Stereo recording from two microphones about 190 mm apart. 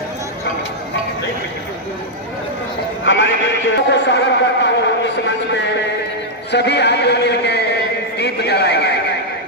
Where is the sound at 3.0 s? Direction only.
75° left (ahead or behind); by 8.9 s 60° left (ahead or behind).